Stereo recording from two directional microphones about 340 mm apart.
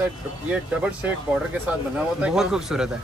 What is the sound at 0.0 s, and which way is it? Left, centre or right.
Speech, centre.